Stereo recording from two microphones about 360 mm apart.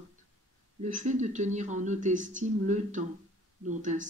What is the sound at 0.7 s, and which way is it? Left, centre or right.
Speech, centre.